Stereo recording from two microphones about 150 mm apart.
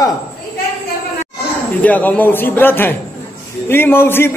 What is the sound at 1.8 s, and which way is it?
A man's voice, 10° left (ahead or behind).